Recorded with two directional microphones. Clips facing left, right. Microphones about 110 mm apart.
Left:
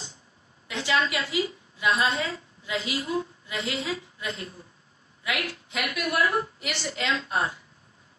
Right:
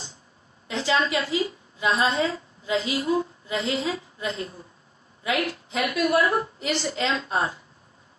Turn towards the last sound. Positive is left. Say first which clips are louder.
# right 2 dB
turn(degrees=-30)  # may be behind; listen again after turning